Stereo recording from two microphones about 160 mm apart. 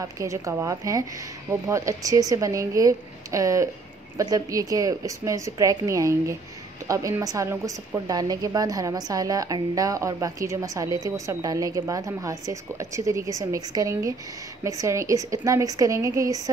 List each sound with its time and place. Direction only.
0.0 s a woman's voice: 20° right (ahead or behind)